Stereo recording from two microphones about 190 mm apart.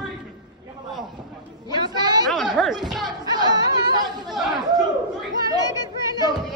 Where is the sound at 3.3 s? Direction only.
20° right (ahead or behind).